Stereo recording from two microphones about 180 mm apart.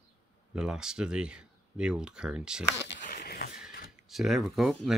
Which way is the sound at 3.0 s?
55° left (ahead or behind).